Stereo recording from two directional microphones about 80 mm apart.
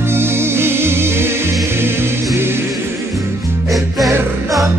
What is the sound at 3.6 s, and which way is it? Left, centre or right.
Music, centre.